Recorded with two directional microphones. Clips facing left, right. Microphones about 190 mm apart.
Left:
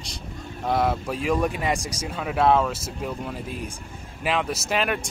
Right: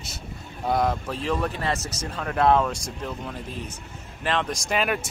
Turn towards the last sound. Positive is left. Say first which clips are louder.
# even
turn(degrees=0)  # may be behind; listen again after turning